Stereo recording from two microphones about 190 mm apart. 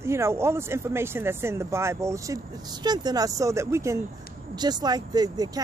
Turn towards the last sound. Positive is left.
turn(degrees=-20)  # may be behind; listen again after turning